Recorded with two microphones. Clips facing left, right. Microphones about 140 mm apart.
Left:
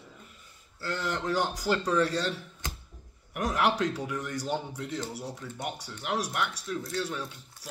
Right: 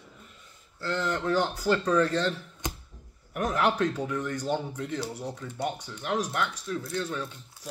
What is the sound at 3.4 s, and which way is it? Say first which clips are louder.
Speech: right 1 dB; 15° left (ahead or behind).